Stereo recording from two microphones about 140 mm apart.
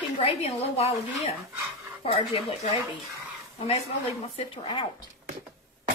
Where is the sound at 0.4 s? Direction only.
45° left (ahead or behind).